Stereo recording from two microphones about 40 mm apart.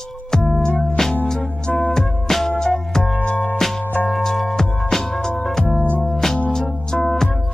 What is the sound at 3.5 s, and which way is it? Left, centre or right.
Music, centre.